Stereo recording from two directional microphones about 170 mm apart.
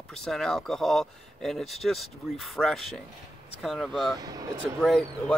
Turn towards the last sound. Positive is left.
turn(degrees=5)  # may be behind; listen again after turning